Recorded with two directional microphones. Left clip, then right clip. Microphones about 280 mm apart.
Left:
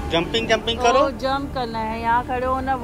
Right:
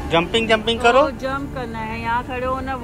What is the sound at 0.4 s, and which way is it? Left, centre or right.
Speech, centre.